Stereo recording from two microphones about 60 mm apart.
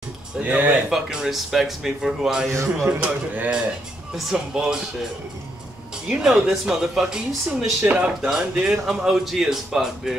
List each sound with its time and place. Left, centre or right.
0.4 s speech: right
0.8 s speech: centre
2.5 s a man's voice: right
3.0 s speech: centre
4.1 s speech: centre
6.0 s speech: centre
7.9 s speech: right
8.3 s speech: centre